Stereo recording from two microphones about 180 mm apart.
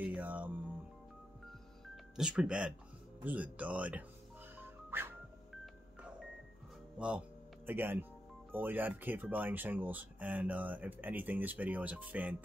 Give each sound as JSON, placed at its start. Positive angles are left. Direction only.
{"t": 0.0, "sound": "music", "side_deg": -5}
{"t": 2.1, "sound": "speech", "side_deg": -5}
{"t": 4.6, "sound": "music", "side_deg": -10}
{"t": 7.0, "sound": "speech", "side_deg": -5}